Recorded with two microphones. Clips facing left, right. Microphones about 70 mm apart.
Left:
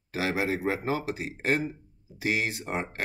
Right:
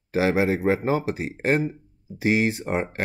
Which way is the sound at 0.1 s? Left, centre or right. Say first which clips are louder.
Right 7 dB; right.